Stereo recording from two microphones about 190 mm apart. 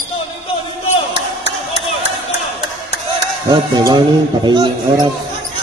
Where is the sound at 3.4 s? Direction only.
20° right (ahead or behind).